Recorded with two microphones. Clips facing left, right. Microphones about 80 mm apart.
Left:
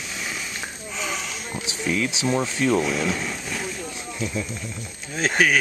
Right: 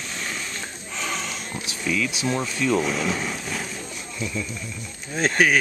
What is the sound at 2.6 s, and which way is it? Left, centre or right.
Speech, centre.